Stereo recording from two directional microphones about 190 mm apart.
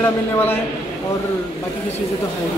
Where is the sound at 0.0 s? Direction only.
10° left (ahead or behind).